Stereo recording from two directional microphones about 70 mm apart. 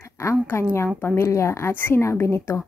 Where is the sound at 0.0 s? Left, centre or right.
Left.